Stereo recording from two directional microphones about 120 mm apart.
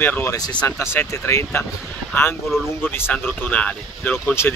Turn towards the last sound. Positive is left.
turn(degrees=10)  # may be behind; listen again after turning